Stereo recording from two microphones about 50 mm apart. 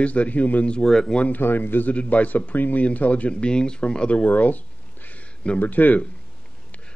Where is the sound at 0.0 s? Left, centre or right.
Left.